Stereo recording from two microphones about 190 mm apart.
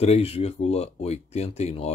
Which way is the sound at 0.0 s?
35° left (ahead or behind).